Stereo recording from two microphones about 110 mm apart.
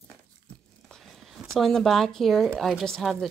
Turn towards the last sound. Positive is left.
turn(degrees=0)  # may be behind; listen again after turning